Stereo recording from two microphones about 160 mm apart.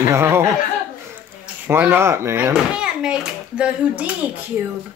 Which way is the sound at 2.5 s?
5° right (ahead or behind).